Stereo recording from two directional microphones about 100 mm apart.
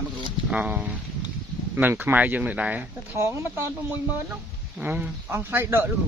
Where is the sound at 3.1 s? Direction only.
30° right (ahead or behind).